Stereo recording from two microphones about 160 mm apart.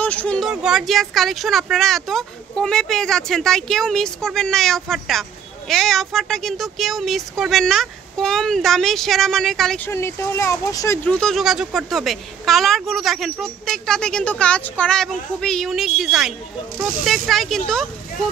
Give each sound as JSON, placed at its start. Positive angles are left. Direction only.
{"t": 0.0, "sound": "speech", "side_deg": 10}
{"t": 0.5, "sound": "a woman's voice", "side_deg": -5}
{"t": 9.8, "sound": "speech", "side_deg": 15}
{"t": 11.1, "sound": "a woman's voice", "side_deg": 5}